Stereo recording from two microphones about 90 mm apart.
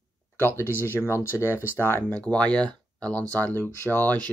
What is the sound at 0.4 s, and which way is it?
Speech, 25° left (ahead or behind).